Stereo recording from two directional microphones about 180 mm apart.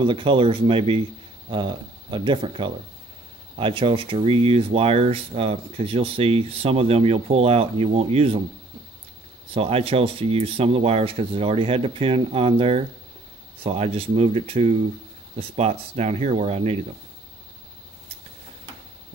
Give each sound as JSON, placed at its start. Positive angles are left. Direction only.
{"t": 0.0, "sound": "speech", "side_deg": -30}
{"t": 9.5, "sound": "speech", "side_deg": -35}